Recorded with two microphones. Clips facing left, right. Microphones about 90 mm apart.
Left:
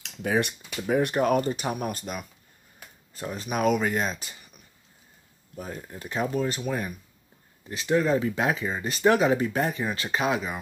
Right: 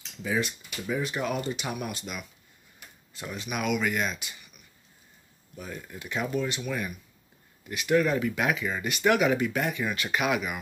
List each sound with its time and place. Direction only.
0.0 s speech: 60° left (ahead or behind); by 4.4 s 35° left (ahead or behind)
5.6 s speech: 35° left (ahead or behind)